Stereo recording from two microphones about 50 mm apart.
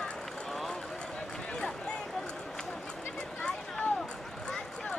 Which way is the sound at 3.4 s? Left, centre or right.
Left.